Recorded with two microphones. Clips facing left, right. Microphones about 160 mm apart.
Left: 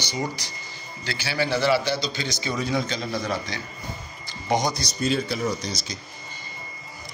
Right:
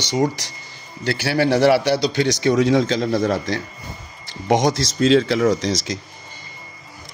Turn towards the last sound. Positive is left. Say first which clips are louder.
# right 9 dB
turn(degrees=-90)